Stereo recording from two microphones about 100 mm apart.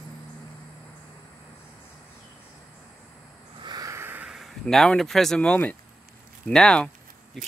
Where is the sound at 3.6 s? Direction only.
45° right (ahead or behind).